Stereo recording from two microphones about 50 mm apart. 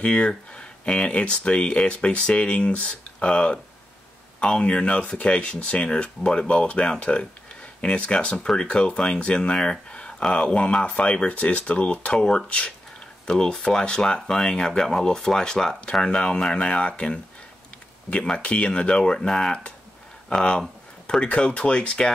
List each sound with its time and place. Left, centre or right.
0.0 s speech: left